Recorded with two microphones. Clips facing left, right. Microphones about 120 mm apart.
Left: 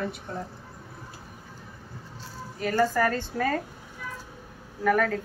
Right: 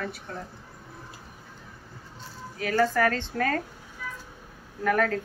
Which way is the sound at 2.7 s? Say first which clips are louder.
Even; 10° left (ahead or behind).